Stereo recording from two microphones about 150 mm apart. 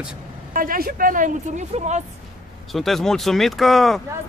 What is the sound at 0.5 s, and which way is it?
A woman's voice, 75° right (ahead or behind).